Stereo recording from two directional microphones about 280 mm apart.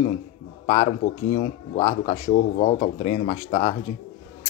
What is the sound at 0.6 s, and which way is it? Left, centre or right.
A man's voice, centre.